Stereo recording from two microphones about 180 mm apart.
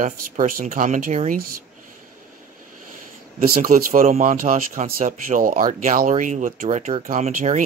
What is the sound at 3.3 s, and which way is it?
Speech, 50° right (ahead or behind).